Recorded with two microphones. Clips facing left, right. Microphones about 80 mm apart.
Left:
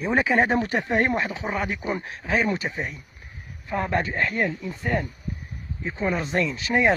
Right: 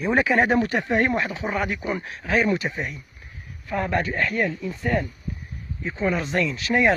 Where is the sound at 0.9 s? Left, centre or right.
Left.